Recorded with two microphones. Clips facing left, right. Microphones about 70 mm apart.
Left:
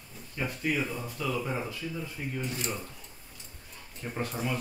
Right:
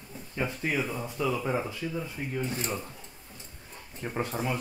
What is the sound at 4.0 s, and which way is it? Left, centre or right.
Speech, right.